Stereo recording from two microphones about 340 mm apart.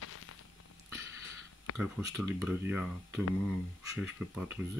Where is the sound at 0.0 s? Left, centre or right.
Left.